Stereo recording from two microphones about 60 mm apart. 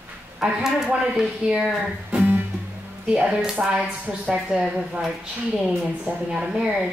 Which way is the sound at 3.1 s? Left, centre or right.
Centre.